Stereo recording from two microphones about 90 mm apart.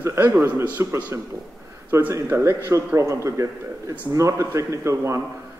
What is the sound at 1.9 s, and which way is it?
A man's voice, 30° right (ahead or behind).